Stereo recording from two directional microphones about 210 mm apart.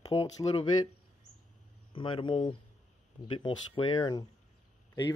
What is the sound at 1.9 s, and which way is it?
Speech, 25° left (ahead or behind).